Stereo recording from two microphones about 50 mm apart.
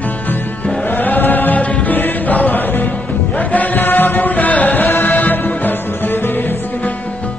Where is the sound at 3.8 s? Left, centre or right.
Left.